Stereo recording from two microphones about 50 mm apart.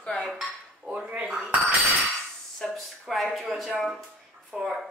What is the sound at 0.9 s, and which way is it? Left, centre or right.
Speech, right.